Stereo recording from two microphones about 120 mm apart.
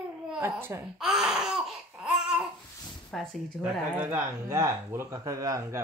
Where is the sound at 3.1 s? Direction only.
5° left (ahead or behind).